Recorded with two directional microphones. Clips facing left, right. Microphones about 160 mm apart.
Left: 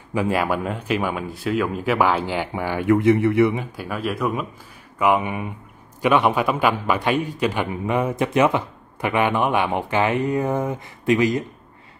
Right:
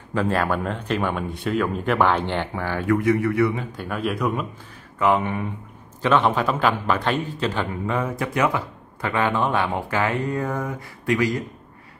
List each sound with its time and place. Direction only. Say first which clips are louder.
0.1 s a man's voice: left 1 dB; 10° left (ahead or behind)
3.7 s a man's voice: even; 5° left (ahead or behind); by 11.4 s 20° left (ahead or behind)